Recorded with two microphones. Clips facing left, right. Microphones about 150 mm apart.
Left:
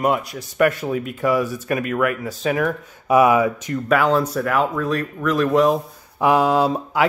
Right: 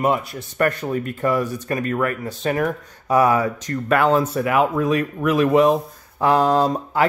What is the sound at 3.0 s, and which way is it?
Speech, 15° left (ahead or behind).